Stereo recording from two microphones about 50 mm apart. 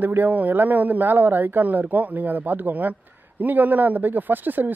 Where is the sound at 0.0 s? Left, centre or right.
Right.